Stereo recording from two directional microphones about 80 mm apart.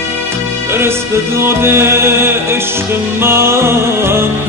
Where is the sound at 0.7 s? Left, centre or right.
Right.